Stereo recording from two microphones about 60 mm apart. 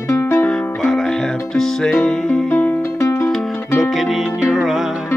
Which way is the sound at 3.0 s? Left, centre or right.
Left.